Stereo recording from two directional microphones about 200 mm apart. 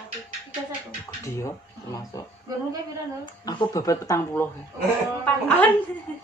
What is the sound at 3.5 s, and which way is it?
Speech, 20° left (ahead or behind).